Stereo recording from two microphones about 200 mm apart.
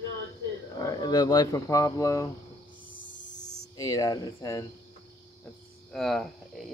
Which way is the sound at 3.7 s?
15° left (ahead or behind).